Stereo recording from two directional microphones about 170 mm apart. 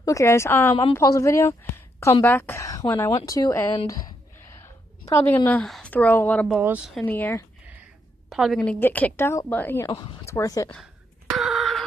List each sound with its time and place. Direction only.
0.0 s a woman's voice: 15° left (ahead or behind)
6.6 s speech: 10° right (ahead or behind)
7.0 s speech: 10° left (ahead or behind)
8.3 s speech: centre (ahead or behind); by 10.7 s 20° left (ahead or behind)
10.7 s gasp: centre (ahead or behind)